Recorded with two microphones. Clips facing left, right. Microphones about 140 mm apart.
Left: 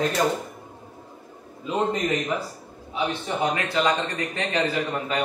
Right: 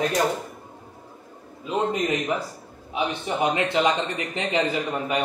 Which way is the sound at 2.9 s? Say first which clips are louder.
Right 1 dB; 20° right (ahead or behind).